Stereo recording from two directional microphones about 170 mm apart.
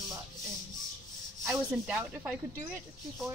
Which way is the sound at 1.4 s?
10° right (ahead or behind).